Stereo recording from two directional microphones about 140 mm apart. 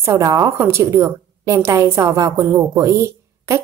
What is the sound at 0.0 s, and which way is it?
A woman's voice, 20° right (ahead or behind).